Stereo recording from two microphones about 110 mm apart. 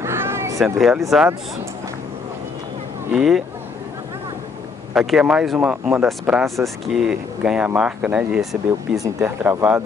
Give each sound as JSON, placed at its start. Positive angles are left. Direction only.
{"t": 0.0, "sound": "a sound", "side_deg": -25}
{"t": 0.7, "sound": "speech", "side_deg": 0}
{"t": 3.2, "sound": "speech", "side_deg": -5}
{"t": 4.9, "sound": "speech", "side_deg": -5}
{"t": 9.0, "sound": "speech", "side_deg": -20}